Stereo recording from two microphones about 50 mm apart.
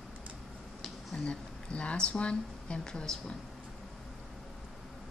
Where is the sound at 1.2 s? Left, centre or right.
Left.